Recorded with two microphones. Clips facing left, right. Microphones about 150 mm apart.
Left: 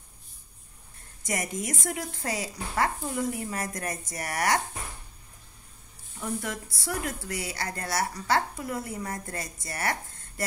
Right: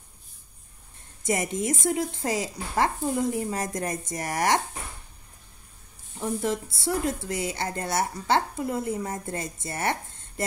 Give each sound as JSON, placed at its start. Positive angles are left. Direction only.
{"t": 1.2, "sound": "speech", "side_deg": -25}
{"t": 6.1, "sound": "speech", "side_deg": -25}